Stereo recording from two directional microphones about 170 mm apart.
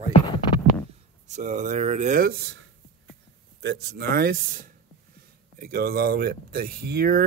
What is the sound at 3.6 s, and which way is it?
Speech, 75° right (ahead or behind).